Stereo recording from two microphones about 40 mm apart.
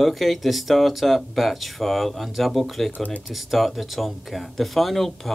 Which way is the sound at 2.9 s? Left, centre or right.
Left.